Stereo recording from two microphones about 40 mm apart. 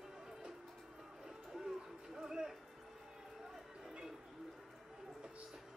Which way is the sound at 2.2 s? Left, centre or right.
Centre.